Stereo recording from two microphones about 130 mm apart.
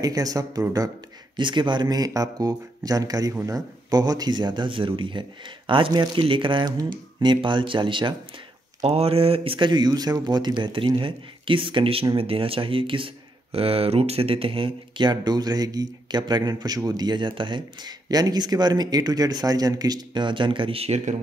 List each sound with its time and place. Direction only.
0.0 s speech: 30° right (ahead or behind)
8.8 s speech: 50° right (ahead or behind)